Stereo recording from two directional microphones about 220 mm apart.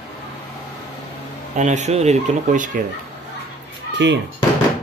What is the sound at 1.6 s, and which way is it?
Speech, 30° right (ahead or behind).